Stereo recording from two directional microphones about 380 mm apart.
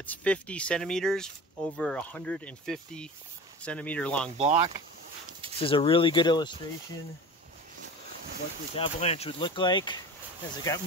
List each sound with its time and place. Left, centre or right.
0.0 s speech: centre
4.4 s speech: centre
5.6 s speech: centre
8.7 s speech: centre